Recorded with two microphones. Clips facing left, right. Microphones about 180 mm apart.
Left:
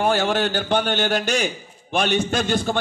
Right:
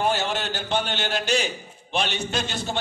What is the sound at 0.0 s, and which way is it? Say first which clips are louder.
A man's voice: left 5 dB; 55° left (ahead or behind).